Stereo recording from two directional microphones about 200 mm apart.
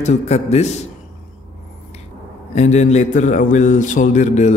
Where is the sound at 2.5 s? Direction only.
35° left (ahead or behind).